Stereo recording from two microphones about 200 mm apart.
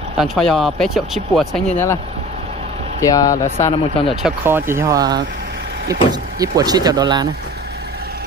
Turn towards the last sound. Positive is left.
turn(degrees=-20)  # may be behind; listen again after turning